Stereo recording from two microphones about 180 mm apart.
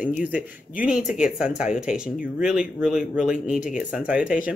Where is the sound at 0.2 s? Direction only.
5° right (ahead or behind).